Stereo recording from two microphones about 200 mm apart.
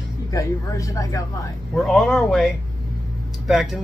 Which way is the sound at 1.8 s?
Centre (ahead or behind).